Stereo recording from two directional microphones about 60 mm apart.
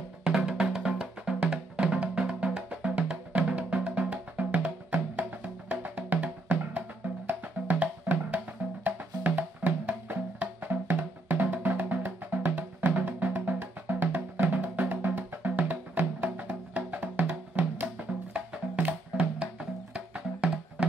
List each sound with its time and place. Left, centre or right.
0.2 s drum: centre
1.5 s music: centre
7.8 s music: right